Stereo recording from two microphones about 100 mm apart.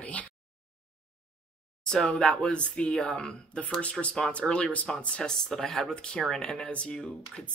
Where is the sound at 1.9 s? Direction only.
5° left (ahead or behind).